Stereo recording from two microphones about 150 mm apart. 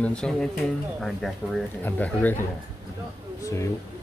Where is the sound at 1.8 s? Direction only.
10° left (ahead or behind).